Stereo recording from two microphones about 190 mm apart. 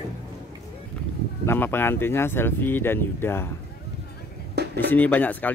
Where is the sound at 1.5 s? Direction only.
10° left (ahead or behind).